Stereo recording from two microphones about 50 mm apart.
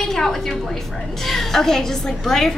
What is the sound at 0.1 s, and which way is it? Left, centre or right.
A woman's voice, centre.